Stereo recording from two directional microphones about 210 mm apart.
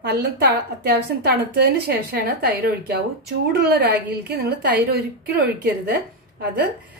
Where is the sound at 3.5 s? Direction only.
50° right (ahead or behind).